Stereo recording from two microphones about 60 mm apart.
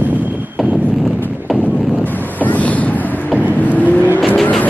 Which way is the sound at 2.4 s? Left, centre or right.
Left.